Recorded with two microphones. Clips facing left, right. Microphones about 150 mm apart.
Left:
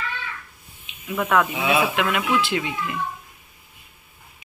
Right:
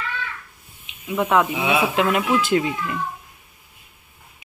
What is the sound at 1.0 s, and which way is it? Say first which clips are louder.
Speech: right 2 dB; 25° right (ahead or behind).